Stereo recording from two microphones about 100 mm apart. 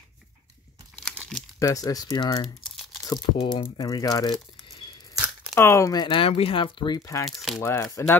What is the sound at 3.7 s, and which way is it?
Speech, 40° left (ahead or behind).